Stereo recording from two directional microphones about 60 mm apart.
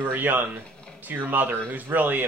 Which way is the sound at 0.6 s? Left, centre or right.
Centre.